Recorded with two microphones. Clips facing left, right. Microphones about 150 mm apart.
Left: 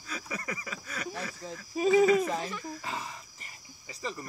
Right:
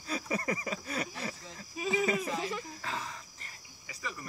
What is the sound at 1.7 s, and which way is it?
Speech, 40° left (ahead or behind).